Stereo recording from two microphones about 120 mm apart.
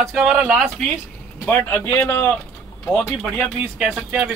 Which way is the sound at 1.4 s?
20° left (ahead or behind).